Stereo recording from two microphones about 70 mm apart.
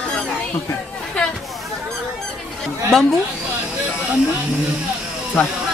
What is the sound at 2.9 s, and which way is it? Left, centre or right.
Speech, centre.